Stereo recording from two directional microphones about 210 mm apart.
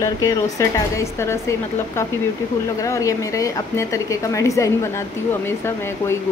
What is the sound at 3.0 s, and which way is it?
A woman's voice, 15° left (ahead or behind).